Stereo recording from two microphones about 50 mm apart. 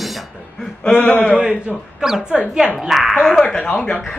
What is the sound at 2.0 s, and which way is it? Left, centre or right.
Speech, centre.